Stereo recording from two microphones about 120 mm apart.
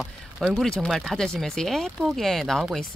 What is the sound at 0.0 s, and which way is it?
Speech, centre (ahead or behind).